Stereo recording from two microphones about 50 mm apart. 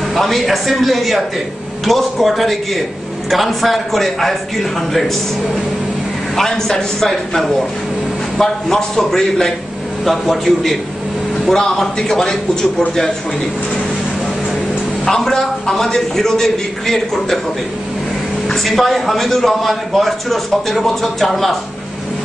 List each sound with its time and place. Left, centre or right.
0.1 s a man's voice: centre
6.3 s a man's voice: centre
15.0 s a man's voice: centre
18.5 s a man's voice: centre